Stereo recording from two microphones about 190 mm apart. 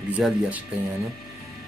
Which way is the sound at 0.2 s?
10° right (ahead or behind).